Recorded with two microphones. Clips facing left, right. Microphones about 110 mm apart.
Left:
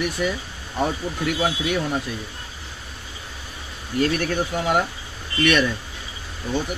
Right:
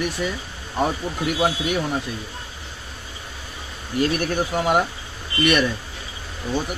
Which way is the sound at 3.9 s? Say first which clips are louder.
Even; 10° right (ahead or behind).